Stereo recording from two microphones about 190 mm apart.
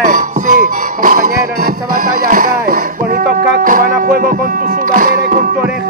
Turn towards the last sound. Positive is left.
turn(degrees=-45)  # may be behind; listen again after turning